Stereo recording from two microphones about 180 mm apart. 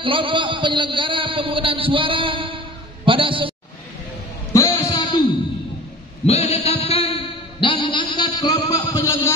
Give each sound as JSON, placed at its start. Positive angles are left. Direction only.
{"t": 0.0, "sound": "speech", "side_deg": -30}
{"t": 4.5, "sound": "music", "side_deg": 15}
{"t": 6.2, "sound": "a sound", "side_deg": 35}